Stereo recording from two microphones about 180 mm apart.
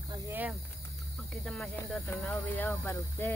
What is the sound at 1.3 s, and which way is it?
Speech, centre (ahead or behind).